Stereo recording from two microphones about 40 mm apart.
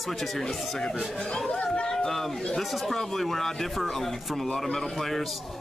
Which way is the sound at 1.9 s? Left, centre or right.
Centre.